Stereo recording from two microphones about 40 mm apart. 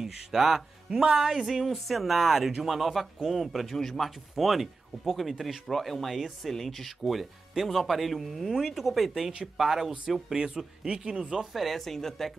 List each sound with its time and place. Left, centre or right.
0.0 s speech: centre
3.7 s speech: centre
4.0 s speech: centre
11.5 s speech: centre